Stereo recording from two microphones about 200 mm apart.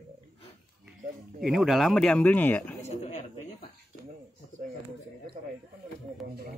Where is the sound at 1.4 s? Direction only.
Centre (ahead or behind).